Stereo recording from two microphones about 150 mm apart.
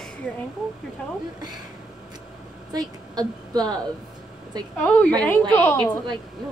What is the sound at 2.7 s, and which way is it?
A woman's voice, 25° right (ahead or behind).